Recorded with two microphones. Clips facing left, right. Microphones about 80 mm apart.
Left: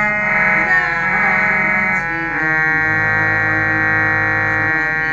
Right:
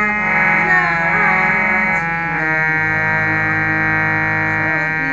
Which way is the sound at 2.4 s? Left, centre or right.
Left.